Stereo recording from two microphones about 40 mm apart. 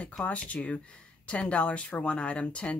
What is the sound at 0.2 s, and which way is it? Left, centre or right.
Speech, left.